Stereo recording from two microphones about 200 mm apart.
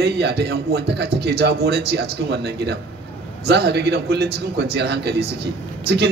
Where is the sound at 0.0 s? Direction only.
55° right (ahead or behind).